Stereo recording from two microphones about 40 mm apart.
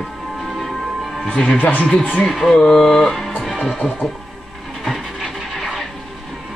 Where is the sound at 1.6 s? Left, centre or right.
Left.